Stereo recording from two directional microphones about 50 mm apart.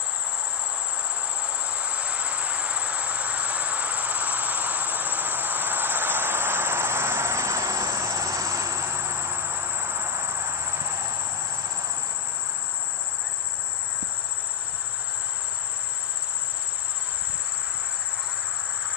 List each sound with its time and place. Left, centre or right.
1.2 s cricket: right